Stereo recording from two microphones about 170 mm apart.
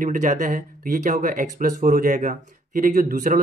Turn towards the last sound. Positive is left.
turn(degrees=-50)  # may be behind; listen again after turning